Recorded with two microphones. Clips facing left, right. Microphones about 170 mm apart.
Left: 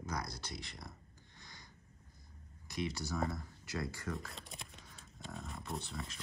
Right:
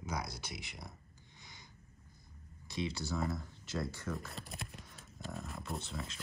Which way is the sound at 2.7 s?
25° right (ahead or behind).